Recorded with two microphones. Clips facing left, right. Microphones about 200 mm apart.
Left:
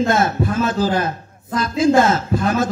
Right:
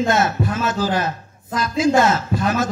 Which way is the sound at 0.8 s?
55° left (ahead or behind).